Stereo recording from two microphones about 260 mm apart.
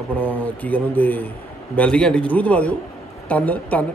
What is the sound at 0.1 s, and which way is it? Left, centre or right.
A man's voice, centre.